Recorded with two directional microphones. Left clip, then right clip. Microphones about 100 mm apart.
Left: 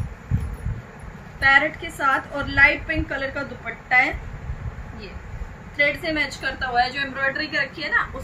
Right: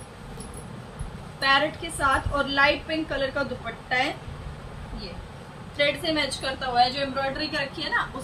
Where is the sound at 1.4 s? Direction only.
20° right (ahead or behind).